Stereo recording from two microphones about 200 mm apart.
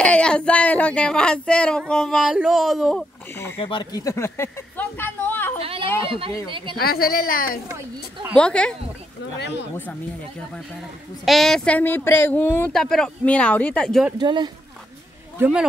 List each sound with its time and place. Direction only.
0.0 s speech: 5° left (ahead or behind)
3.5 s speech: 25° left (ahead or behind)
5.6 s a sound: 30° right (ahead or behind)
6.0 s speech: 25° right (ahead or behind)
6.8 s a woman's voice: 50° left (ahead or behind)
8.4 s speech: 5° left (ahead or behind)
10.5 s speech: centre (ahead or behind)
14.2 s speech: 20° right (ahead or behind)
15.3 s a man's voice: 10° right (ahead or behind)